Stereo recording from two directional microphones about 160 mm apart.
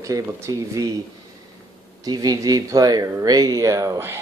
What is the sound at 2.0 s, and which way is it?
Speech, 25° right (ahead or behind).